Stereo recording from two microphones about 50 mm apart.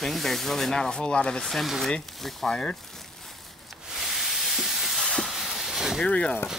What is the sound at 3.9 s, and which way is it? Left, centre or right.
Steam, centre.